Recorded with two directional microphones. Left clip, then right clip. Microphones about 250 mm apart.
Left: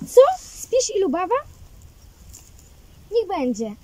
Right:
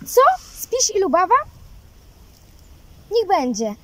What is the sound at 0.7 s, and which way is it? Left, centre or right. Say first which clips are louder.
Speech: right 2 dB; centre.